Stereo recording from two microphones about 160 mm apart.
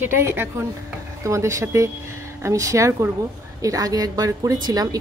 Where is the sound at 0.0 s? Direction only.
15° right (ahead or behind).